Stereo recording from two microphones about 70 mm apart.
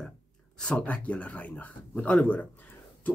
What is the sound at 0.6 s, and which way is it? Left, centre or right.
Speech, centre.